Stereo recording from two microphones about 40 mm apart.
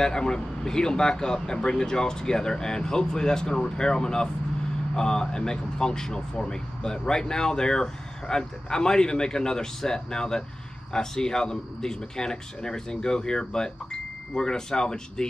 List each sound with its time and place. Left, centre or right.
0.0 s speech: centre